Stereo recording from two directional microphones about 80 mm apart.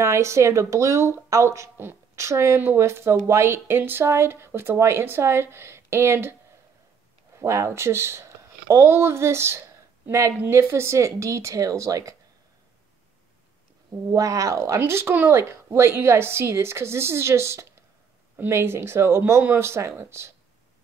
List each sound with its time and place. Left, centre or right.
0.0 s speech: right
7.3 s speech: right
14.1 s speech: right